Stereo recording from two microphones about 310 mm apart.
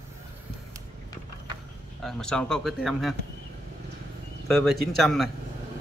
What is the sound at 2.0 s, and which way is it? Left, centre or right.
Speech, centre.